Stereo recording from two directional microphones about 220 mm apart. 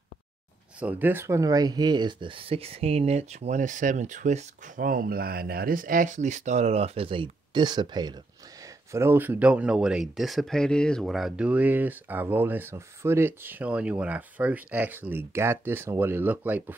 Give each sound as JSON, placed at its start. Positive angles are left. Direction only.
{"t": 0.7, "sound": "speech", "side_deg": -5}